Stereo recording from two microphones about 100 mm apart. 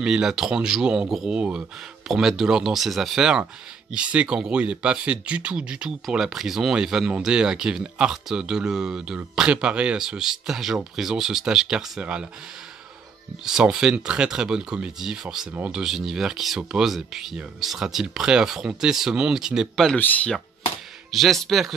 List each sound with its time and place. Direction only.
0.0 s speech: 5° right (ahead or behind)
13.4 s speech: 5° right (ahead or behind)
20.0 s speech: 15° left (ahead or behind)
21.1 s speech: centre (ahead or behind)